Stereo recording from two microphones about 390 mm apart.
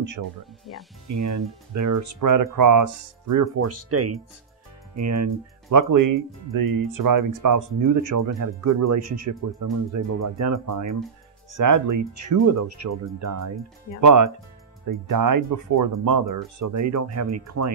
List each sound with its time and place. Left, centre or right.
0.0 s speech: right